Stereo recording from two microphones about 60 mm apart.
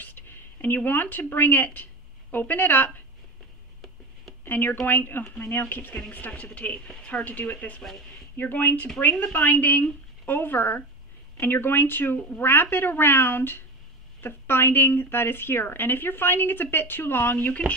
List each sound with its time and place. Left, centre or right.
0.0 s speech: left
4.5 s a woman's voice: left